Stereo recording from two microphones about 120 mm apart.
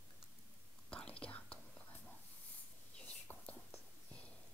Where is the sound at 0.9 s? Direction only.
10° left (ahead or behind).